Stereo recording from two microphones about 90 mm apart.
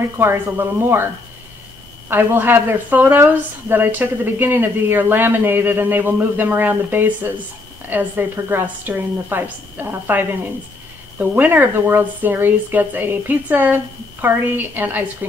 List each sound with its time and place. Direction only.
0.2 s a woman's voice: 25° right (ahead or behind)
2.0 s a woman's voice: 20° right (ahead or behind)